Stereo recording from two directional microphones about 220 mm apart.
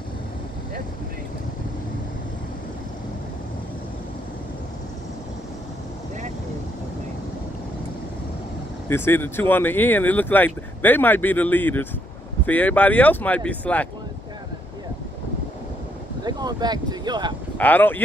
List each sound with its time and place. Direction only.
8.8 s speech: 10° left (ahead or behind)
16.3 s speech: 20° right (ahead or behind)
17.6 s speech: 10° left (ahead or behind)